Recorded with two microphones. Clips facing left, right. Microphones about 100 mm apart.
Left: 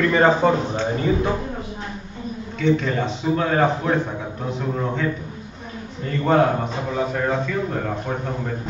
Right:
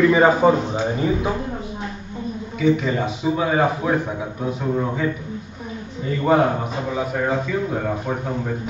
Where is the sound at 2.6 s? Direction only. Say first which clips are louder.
Right 1 dB; 10° right (ahead or behind).